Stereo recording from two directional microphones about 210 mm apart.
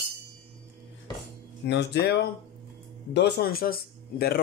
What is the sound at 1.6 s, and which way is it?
Speech, 55° left (ahead or behind).